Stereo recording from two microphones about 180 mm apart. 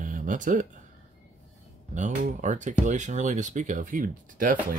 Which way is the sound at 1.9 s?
45° right (ahead or behind).